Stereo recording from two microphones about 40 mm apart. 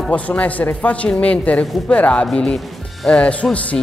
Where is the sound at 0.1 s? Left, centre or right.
Left.